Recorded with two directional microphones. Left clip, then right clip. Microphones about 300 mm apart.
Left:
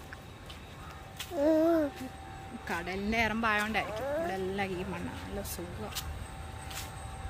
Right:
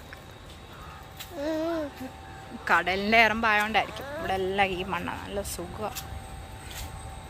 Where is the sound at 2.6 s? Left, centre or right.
Centre.